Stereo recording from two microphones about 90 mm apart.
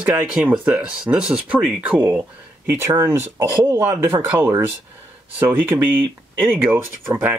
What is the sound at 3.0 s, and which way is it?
Speech, 30° right (ahead or behind).